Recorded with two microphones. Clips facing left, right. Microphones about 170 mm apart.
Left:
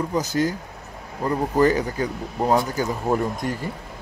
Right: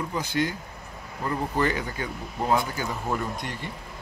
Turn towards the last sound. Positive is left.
turn(degrees=40)  # may be behind; listen again after turning